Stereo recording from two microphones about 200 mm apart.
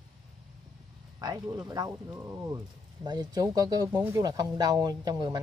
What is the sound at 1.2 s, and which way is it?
Speech, 20° right (ahead or behind).